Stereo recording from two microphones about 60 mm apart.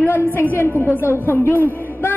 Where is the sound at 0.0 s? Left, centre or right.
Left.